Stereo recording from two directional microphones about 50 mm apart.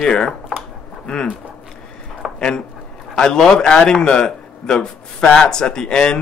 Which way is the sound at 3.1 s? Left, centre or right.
Centre.